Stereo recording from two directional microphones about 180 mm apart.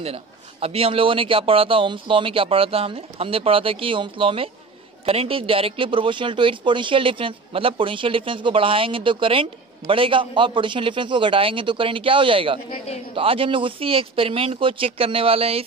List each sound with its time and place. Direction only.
0.0 s a man's voice: 35° right (ahead or behind)
12.7 s a man's voice: 35° left (ahead or behind)
13.1 s a man's voice: 30° right (ahead or behind)